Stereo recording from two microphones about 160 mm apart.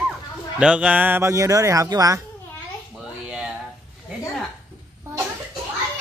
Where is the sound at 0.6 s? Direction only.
5° right (ahead or behind); by 2.1 s 20° right (ahead or behind).